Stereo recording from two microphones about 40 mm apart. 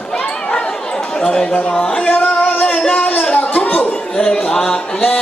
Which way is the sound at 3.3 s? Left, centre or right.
Left.